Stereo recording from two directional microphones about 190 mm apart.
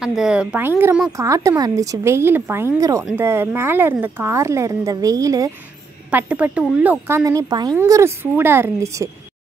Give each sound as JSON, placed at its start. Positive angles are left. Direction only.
{"t": 0.0, "sound": "a woman's voice", "side_deg": 0}
{"t": 6.0, "sound": "a woman's voice", "side_deg": -5}